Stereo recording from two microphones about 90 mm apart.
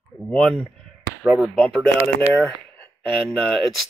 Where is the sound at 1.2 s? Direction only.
5° right (ahead or behind).